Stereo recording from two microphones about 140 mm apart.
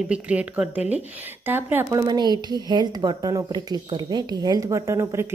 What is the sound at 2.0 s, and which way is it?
Speech, 30° right (ahead or behind).